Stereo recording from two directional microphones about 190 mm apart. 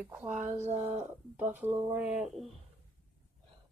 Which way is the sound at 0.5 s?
35° right (ahead or behind).